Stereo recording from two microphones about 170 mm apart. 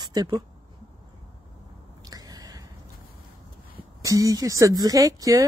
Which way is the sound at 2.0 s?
20° right (ahead or behind).